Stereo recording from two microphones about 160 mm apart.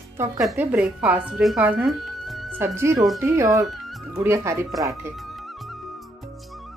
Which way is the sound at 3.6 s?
Centre (ahead or behind).